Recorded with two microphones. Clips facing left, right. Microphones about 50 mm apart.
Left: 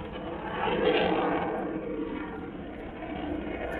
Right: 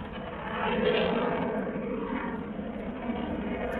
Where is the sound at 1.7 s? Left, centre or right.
Centre.